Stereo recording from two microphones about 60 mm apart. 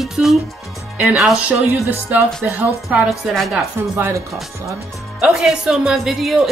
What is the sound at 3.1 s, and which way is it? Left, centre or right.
Speech, centre.